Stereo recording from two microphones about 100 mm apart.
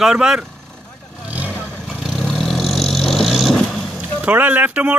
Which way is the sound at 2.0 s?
Centre (ahead or behind).